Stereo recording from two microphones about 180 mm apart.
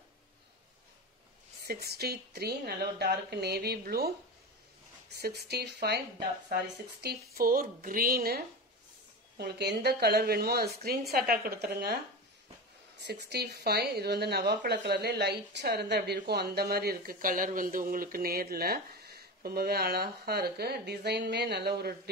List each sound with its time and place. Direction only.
1.7 s speech: 60° right (ahead or behind)
5.1 s speech: 65° right (ahead or behind)
7.6 s a sound: 50° right (ahead or behind)
9.4 s speech: 65° right (ahead or behind)
13.0 s speech: 65° right (ahead or behind)